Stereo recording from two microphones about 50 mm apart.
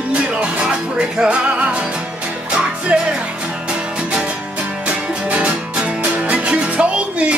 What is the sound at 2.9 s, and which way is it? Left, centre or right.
Music, right.